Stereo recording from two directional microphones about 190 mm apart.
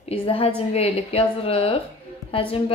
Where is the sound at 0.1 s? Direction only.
30° left (ahead or behind).